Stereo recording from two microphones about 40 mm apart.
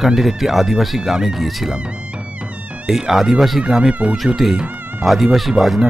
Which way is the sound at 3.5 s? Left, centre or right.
Centre.